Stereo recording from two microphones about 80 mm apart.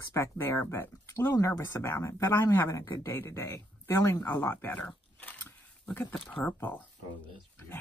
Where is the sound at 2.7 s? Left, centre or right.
Left.